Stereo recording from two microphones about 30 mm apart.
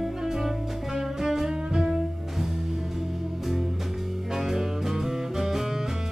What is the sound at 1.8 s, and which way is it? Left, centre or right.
Cello, centre.